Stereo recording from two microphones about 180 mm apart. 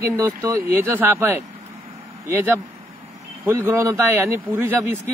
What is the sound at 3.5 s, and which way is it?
A man's voice, 15° right (ahead or behind).